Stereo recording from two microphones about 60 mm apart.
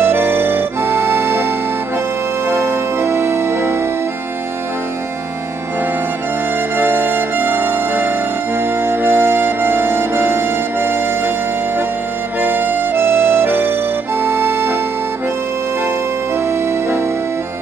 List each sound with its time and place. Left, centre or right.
0.0 s music: right
6.8 s music: right
12.4 s music: right